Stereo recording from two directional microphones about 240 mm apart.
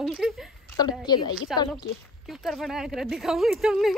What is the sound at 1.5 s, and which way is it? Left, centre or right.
Speech, centre.